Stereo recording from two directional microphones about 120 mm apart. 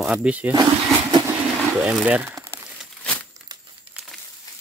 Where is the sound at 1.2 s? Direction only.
10° right (ahead or behind).